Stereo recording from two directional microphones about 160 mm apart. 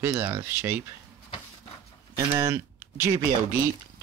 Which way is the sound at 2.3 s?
20° right (ahead or behind).